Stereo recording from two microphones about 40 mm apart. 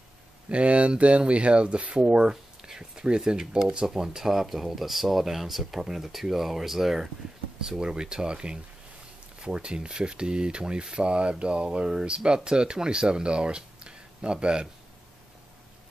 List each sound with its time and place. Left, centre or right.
0.5 s speech: right